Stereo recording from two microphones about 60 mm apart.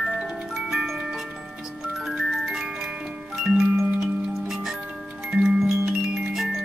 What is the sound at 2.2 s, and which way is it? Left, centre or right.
Music, centre.